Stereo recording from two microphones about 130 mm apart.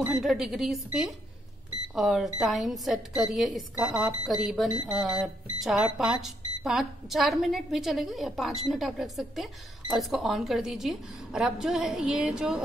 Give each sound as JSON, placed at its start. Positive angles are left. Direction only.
{"t": 0.0, "sound": "speech", "side_deg": -5}